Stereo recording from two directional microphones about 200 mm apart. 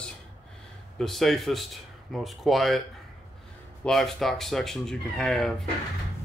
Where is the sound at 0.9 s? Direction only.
Centre (ahead or behind).